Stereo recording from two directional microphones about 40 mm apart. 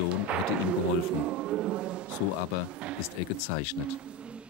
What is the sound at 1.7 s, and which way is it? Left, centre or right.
Speech, right.